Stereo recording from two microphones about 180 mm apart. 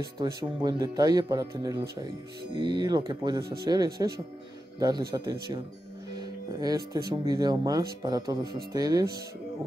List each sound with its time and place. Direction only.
0.2 s speech: 25° right (ahead or behind)
6.1 s speech: 20° right (ahead or behind)